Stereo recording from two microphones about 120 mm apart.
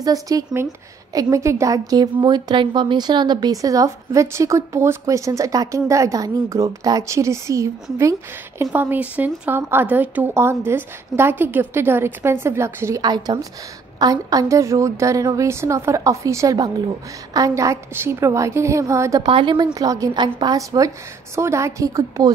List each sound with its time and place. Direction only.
0.0 s a woman's voice: 30° right (ahead or behind)
13.0 s a woman's voice: 35° right (ahead or behind)
19.2 s a woman's voice: 40° right (ahead or behind)